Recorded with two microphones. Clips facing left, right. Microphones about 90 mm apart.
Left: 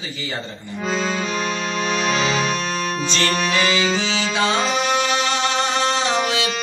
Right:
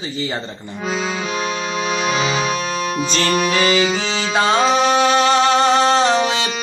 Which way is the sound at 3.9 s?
35° right (ahead or behind).